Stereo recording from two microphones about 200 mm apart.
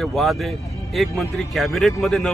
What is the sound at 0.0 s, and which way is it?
A man's voice, centre (ahead or behind).